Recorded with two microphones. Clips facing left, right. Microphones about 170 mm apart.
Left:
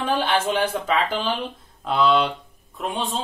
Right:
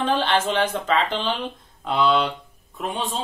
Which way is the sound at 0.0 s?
10° left (ahead or behind).